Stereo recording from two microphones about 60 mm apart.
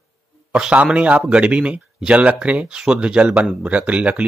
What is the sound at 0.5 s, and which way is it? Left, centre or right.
Speech, centre.